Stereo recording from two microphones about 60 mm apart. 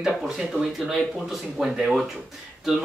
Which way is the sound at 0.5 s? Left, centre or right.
Left.